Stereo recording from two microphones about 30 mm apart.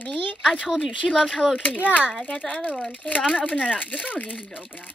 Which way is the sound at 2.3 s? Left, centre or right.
Left.